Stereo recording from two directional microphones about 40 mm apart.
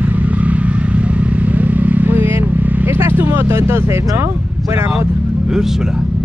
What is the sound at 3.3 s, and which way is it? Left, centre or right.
Speech, right.